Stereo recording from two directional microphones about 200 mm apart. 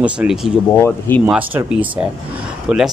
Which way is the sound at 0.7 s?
10° left (ahead or behind).